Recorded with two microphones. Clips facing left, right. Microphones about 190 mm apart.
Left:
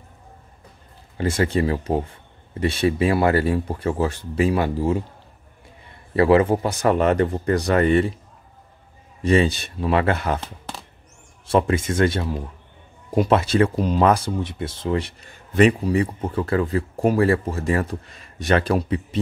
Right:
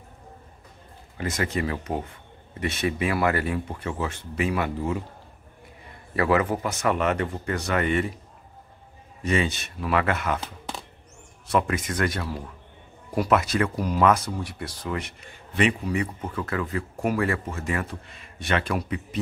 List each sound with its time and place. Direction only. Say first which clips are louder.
1.1 s speech: left 6 dB; 30° left (ahead or behind)
6.1 s speech: left 7 dB; 30° left (ahead or behind)
9.2 s speech: left 7 dB; 35° left (ahead or behind)
10.4 s a sound: even; centre (ahead or behind)
11.4 s speech: left 5 dB; 30° left (ahead or behind)